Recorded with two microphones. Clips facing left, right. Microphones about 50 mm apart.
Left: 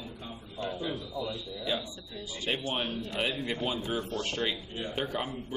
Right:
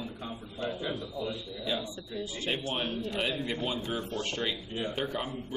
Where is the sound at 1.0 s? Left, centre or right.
Centre.